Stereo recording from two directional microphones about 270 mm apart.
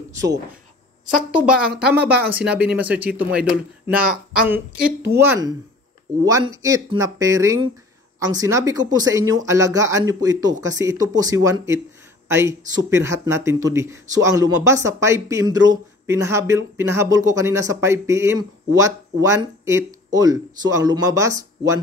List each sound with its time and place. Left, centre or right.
1.3 s speech: centre